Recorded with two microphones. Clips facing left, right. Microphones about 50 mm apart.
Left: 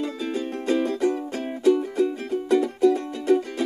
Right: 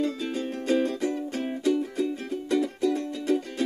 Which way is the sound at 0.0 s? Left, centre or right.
Centre.